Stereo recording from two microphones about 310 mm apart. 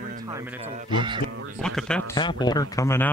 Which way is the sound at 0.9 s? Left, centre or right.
Centre.